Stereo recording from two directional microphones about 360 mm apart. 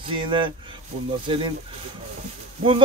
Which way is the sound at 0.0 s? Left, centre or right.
Centre.